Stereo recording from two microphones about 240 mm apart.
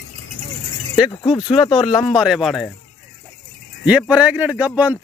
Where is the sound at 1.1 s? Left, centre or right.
Centre.